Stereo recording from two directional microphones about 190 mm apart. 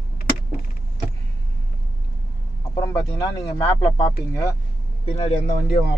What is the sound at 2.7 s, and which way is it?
Speech, 15° left (ahead or behind).